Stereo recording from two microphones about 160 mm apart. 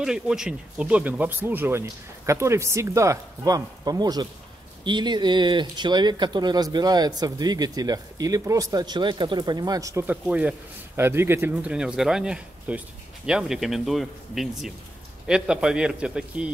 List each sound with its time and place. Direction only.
0.0 s speech: 5° right (ahead or behind)
10.2 s speech: 10° right (ahead or behind)